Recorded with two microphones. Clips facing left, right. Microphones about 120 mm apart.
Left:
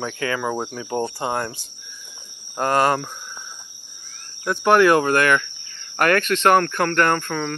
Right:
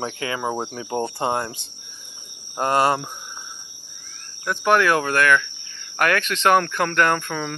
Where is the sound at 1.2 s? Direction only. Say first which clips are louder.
Right 1 dB; 20° right (ahead or behind).